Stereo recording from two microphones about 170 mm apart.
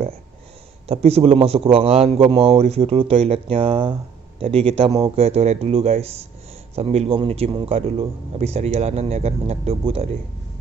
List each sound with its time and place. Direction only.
0.8 s a man's voice: 35° right (ahead or behind)